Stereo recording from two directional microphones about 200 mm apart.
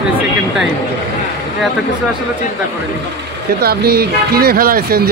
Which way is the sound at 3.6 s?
50° right (ahead or behind).